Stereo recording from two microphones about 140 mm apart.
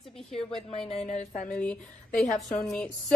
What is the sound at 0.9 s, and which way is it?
Speech, 50° left (ahead or behind).